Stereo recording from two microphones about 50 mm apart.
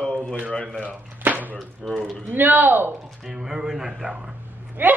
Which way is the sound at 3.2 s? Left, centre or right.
Centre.